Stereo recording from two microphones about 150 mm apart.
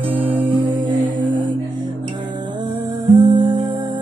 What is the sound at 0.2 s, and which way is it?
Music, 35° right (ahead or behind).